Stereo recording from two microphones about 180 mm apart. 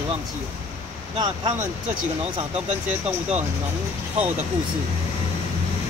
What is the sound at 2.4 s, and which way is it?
Speech, 40° right (ahead or behind).